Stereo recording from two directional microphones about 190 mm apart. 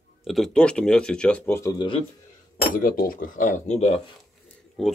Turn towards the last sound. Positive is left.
turn(degrees=0)  # may be behind; listen again after turning